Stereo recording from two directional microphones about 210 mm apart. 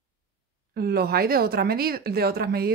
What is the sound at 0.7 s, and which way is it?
Speech, 50° right (ahead or behind).